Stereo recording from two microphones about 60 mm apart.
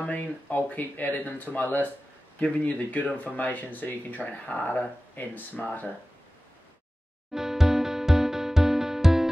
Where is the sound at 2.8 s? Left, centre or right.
Left.